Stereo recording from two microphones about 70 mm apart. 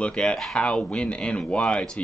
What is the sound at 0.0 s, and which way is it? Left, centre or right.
Speech, centre.